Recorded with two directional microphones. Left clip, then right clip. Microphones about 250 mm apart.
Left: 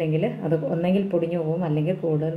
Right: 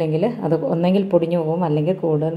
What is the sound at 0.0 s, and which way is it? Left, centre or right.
A woman's voice, right.